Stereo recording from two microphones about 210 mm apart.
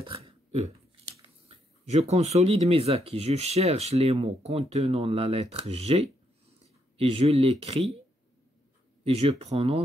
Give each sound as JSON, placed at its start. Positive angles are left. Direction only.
{"t": 0.0, "sound": "a sound", "side_deg": -25}
{"t": 1.2, "sound": "speech", "side_deg": -30}
{"t": 7.0, "sound": "speech", "side_deg": -25}
{"t": 9.0, "sound": "speech", "side_deg": -30}